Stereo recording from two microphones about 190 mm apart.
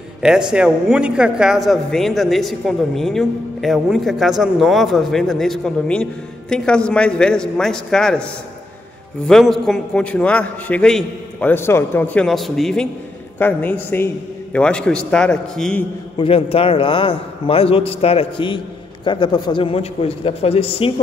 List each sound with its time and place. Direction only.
0.2 s speech: 5° right (ahead or behind)
9.3 s speech: centre (ahead or behind)
16.2 s a man's voice: 30° left (ahead or behind)